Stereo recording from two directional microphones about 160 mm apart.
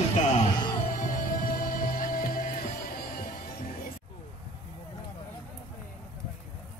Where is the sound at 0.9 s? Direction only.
55° left (ahead or behind).